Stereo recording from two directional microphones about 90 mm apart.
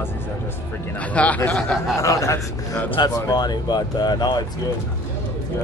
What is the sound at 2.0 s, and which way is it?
Speech, 35° left (ahead or behind).